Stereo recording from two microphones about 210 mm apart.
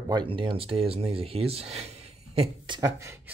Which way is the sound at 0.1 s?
25° right (ahead or behind).